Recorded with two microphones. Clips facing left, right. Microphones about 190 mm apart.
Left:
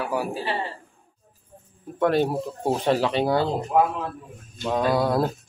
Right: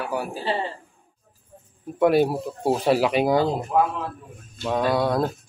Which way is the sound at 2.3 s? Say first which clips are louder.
Right 1 dB; centre (ahead or behind).